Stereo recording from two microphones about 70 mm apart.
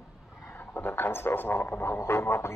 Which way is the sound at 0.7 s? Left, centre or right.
Left.